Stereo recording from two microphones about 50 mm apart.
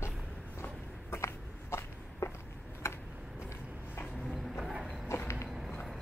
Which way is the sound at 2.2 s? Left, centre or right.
Left.